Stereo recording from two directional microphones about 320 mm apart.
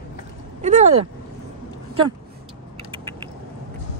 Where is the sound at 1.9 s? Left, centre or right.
Centre.